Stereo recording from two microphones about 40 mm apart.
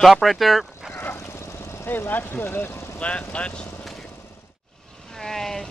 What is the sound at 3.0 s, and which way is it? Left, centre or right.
Speech, left.